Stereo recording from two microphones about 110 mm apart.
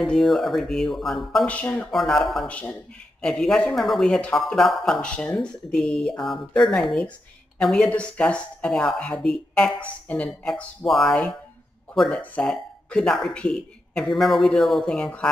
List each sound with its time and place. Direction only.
0.0 s speech: 5° left (ahead or behind)
1.5 s speech: 15° left (ahead or behind)
1.9 s speech: 5° left (ahead or behind)